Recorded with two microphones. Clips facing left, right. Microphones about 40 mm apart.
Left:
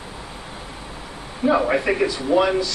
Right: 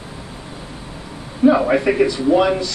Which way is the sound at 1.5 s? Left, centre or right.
Centre.